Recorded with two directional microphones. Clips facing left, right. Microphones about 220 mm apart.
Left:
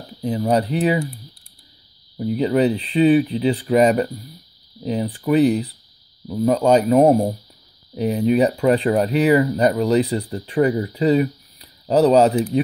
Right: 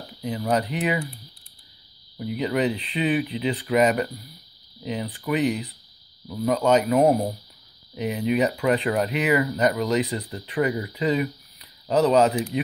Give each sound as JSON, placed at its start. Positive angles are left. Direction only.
{"t": 0.2, "sound": "speech", "side_deg": 35}
{"t": 2.1, "sound": "speech", "side_deg": 35}